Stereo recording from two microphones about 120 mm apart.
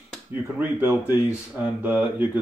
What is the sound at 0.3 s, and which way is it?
Speech, 15° right (ahead or behind).